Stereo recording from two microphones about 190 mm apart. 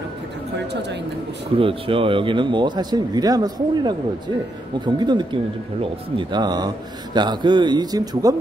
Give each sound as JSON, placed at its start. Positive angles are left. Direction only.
{"t": 1.6, "sound": "speech", "side_deg": -30}